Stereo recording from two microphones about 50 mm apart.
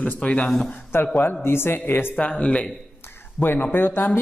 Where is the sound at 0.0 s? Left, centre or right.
Left.